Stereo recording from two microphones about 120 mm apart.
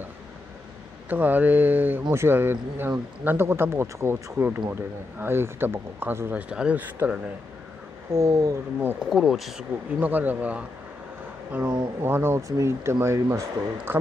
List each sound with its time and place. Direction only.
1.0 s a man's voice: 15° right (ahead or behind)
8.1 s speech: 25° right (ahead or behind)
9.1 s speech: centre (ahead or behind)
9.9 s a man's voice: 15° right (ahead or behind)
12.0 s speech: 20° right (ahead or behind)